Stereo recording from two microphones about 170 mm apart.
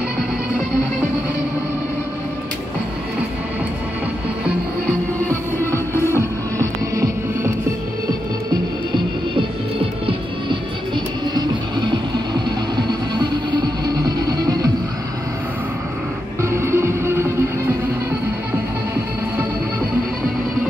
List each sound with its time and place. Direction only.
6.0 s music: 15° right (ahead or behind)
8.9 s music: 30° right (ahead or behind)
12.7 s music: 25° right (ahead or behind)
16.3 s music: 15° right (ahead or behind)